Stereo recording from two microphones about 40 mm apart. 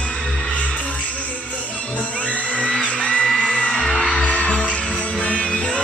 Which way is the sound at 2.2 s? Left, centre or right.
Left.